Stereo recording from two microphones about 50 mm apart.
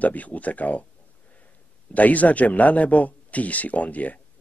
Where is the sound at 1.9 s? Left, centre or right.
Left.